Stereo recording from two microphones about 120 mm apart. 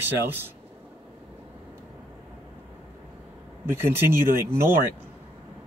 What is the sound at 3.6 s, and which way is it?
Speech, 20° right (ahead or behind).